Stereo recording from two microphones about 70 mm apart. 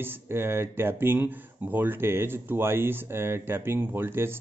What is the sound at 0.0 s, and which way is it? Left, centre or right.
Speech, right.